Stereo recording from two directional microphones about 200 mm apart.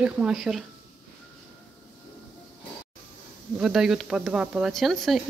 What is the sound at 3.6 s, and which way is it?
Speech, centre (ahead or behind).